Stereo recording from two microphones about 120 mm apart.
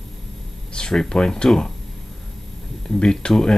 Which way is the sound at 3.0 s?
5° left (ahead or behind).